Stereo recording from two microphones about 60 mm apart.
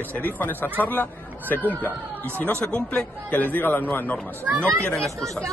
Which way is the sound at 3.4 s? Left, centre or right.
Left.